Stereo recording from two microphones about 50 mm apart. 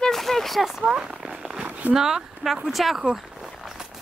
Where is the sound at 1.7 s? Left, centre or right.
Right.